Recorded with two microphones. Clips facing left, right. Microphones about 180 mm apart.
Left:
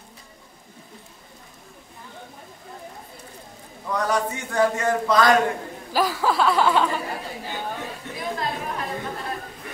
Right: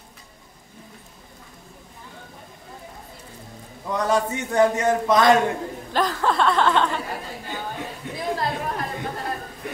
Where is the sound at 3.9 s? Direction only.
25° right (ahead or behind).